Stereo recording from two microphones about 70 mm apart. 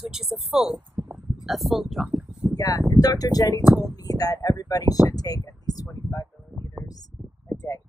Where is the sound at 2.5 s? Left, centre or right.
Left.